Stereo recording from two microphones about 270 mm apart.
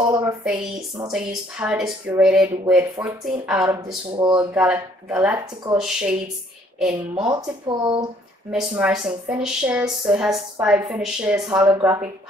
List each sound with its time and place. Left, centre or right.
0.0 s speech: centre
4.2 s speech: centre
4.6 s speech: centre
7.2 s speech: centre
8.5 s speech: centre